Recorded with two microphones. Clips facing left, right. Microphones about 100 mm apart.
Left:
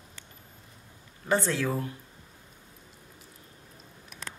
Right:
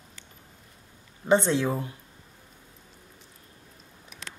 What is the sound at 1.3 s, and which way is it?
Speech, 20° right (ahead or behind).